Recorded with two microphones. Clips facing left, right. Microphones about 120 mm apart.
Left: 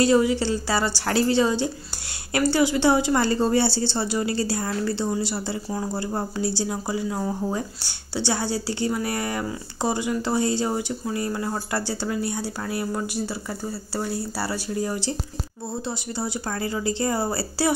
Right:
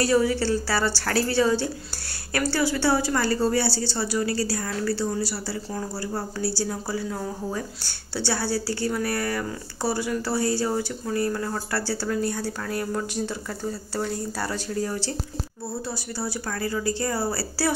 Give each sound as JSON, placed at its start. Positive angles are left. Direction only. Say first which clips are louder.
{"t": 0.0, "sound": "a woman's voice", "louder": "left 2 dB", "side_deg": 20}